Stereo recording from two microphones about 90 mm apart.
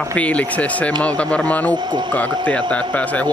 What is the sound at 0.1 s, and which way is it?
A man's voice, 15° left (ahead or behind).